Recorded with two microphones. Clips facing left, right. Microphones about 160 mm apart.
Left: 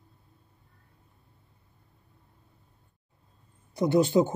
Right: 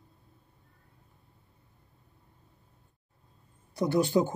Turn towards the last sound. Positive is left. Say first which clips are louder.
# left 3 dB
turn(degrees=20)  # may be behind; listen again after turning